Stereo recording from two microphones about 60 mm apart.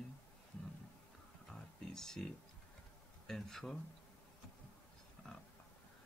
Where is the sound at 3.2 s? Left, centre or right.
Centre.